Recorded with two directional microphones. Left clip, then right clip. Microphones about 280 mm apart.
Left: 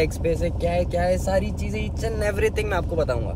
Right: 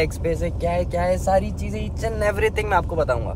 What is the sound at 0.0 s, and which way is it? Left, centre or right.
Speech, centre.